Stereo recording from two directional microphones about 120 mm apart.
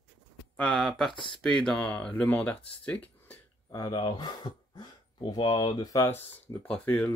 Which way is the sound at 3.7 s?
35° left (ahead or behind).